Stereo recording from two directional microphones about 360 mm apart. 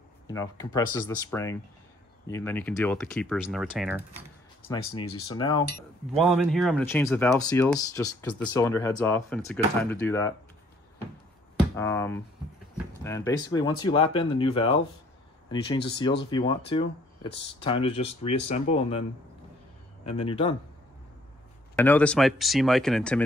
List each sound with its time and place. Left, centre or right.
0.3 s speech: centre
4.6 s speech: centre
6.1 s speech: centre
11.7 s finger snapping: centre
12.7 s speech: centre
20.1 s speech: centre
21.7 s speech: centre